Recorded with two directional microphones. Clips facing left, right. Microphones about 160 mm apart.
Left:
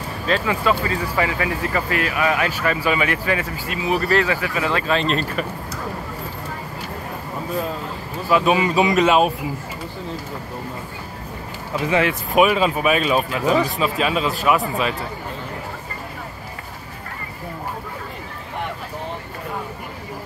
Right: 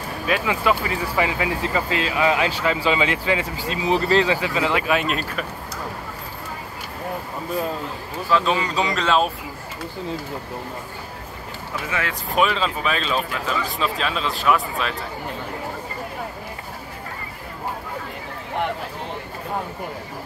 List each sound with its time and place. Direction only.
0.3 s speech: 15° right (ahead or behind)
8.3 s a man's voice: 15° left (ahead or behind)
11.9 s a man's voice: 20° left (ahead or behind); by 15.0 s 5° left (ahead or behind)